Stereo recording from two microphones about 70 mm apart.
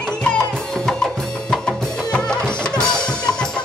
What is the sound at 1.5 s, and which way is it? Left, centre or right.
Music, centre.